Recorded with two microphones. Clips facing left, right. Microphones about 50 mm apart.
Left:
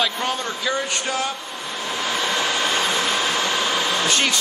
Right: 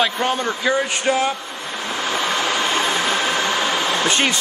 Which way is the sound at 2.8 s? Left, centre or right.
Right.